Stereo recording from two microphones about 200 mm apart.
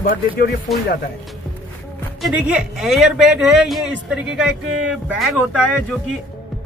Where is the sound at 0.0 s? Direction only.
45° left (ahead or behind).